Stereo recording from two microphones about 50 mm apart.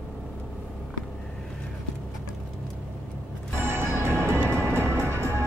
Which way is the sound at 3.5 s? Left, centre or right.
Right.